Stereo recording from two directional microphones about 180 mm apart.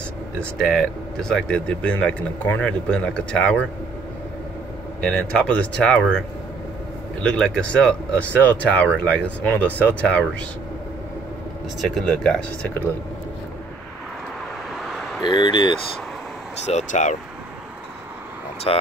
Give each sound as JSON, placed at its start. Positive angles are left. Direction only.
{"t": 0.4, "sound": "speech", "side_deg": 0}
{"t": 5.0, "sound": "speech", "side_deg": 5}
{"t": 7.2, "sound": "speech", "side_deg": 5}
{"t": 11.8, "sound": "speech", "side_deg": 5}
{"t": 15.2, "sound": "speech", "side_deg": 25}
{"t": 16.6, "sound": "speech", "side_deg": 40}
{"t": 18.7, "sound": "speech", "side_deg": 30}